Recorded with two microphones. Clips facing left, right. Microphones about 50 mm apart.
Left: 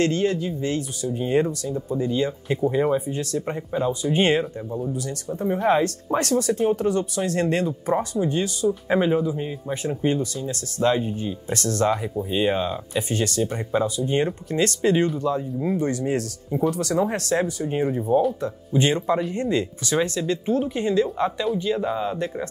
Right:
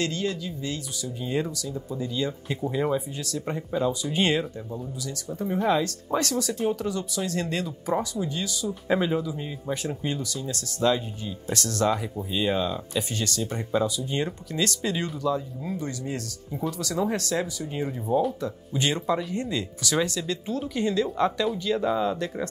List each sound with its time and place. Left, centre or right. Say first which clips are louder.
0.0 s speech: left 7 dB; left; by 3.0 s centre
3.1 s speech: left 7 dB; left
3.4 s speech: right 2 dB; centre
4.9 s speech: left 5 dB; left
8.8 s speech: left 2 dB; centre
17.8 s speech: left 7 dB; centre
18.7 s speech: left 5 dB; left